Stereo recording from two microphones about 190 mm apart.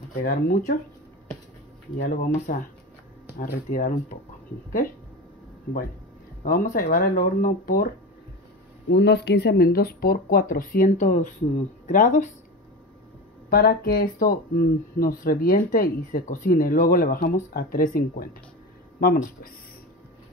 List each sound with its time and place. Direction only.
0.2 s speech: 45° left (ahead or behind)
2.0 s speech: 45° left (ahead or behind)
6.4 s speech: 45° left (ahead or behind)
8.8 s speech: 60° left (ahead or behind); by 12.3 s 45° left (ahead or behind)
13.5 s speech: 55° left (ahead or behind)